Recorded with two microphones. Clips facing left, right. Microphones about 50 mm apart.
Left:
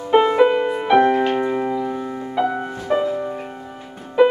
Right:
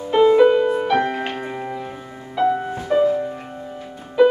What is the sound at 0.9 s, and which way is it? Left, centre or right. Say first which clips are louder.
Music: left 6 dB; centre.